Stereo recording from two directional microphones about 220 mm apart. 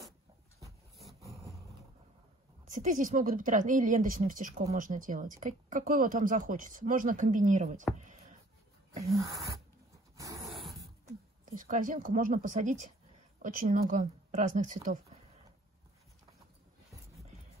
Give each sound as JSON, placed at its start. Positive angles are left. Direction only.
{"t": 0.9, "sound": "vehicle", "side_deg": 0}
{"t": 2.7, "sound": "a woman's voice", "side_deg": -35}
{"t": 10.1, "sound": "zipper", "side_deg": -15}
{"t": 10.4, "sound": "zipper", "side_deg": 0}
{"t": 11.4, "sound": "a woman's voice", "side_deg": -35}